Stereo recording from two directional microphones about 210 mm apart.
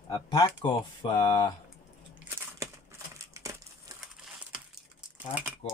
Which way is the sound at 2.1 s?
10° right (ahead or behind).